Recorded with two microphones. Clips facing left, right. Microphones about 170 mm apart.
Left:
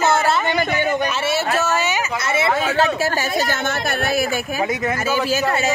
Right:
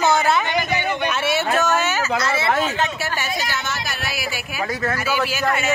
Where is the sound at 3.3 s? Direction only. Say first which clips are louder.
Left 5 dB; 50° left (ahead or behind).